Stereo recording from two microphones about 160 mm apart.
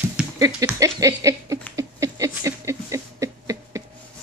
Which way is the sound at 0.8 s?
20° right (ahead or behind).